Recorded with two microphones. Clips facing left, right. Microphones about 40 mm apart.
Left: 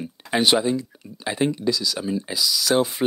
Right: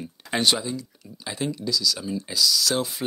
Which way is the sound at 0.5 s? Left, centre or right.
Left.